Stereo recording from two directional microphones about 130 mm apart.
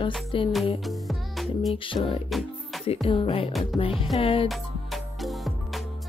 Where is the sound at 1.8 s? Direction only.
40° left (ahead or behind).